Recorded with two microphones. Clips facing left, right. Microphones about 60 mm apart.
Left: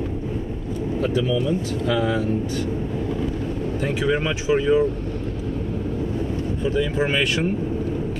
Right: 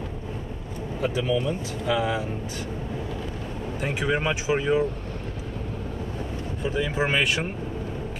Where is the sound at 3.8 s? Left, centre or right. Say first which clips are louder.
Left 2 dB; centre.